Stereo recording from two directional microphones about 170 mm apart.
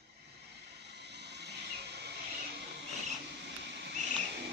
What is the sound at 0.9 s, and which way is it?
Vehicle, 80° right.